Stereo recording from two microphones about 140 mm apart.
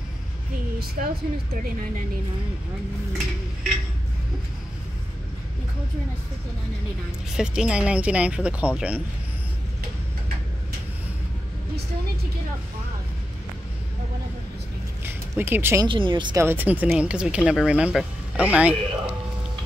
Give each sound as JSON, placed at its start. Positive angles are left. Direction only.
{"t": 1.0, "sound": "speech", "side_deg": -65}
{"t": 7.3, "sound": "speech", "side_deg": -5}
{"t": 15.0, "sound": "a sound", "side_deg": -15}
{"t": 15.8, "sound": "speech", "side_deg": -35}
{"t": 16.3, "sound": "speech", "side_deg": -15}